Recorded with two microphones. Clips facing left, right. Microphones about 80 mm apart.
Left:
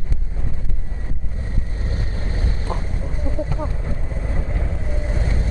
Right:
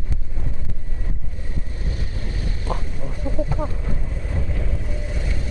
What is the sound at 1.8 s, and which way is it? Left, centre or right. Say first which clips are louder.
Vehicle: left 3 dB; left.